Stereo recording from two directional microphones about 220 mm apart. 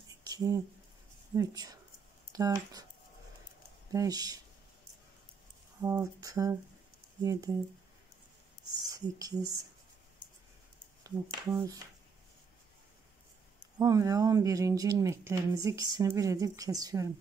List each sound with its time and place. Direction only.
0.2 s a sound: 15° right (ahead or behind)
1.3 s speech: 15° right (ahead or behind)
3.9 s speech: 15° right (ahead or behind)
5.8 s speech: 15° right (ahead or behind)
8.8 s speech: 15° right (ahead or behind)
11.1 s speech: 15° right (ahead or behind)
13.7 s speech: 15° right (ahead or behind)